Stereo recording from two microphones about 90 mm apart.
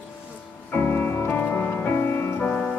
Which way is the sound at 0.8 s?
25° left (ahead or behind).